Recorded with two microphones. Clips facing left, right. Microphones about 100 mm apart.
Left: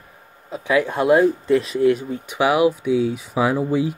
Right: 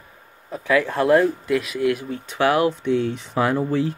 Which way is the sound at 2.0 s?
15° left (ahead or behind).